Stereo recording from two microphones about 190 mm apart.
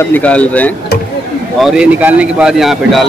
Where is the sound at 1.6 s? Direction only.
5° right (ahead or behind).